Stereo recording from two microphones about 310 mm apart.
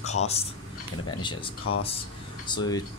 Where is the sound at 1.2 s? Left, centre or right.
Centre.